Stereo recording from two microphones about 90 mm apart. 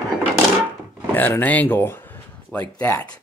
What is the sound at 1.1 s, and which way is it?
Speech, 20° left (ahead or behind).